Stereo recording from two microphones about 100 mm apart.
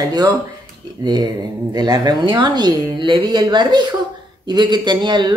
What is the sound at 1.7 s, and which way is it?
Speech, 45° right (ahead or behind).